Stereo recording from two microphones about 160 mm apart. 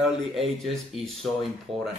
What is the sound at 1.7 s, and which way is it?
Speech, 35° right (ahead or behind).